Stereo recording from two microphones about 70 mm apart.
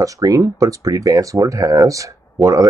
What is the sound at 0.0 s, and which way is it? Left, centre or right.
Speech, right.